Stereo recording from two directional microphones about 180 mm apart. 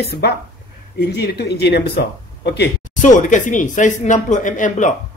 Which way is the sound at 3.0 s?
45° left (ahead or behind).